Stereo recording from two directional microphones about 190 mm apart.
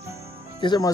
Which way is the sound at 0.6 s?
20° left (ahead or behind).